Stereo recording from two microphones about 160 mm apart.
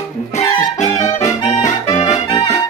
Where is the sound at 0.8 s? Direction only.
45° left (ahead or behind).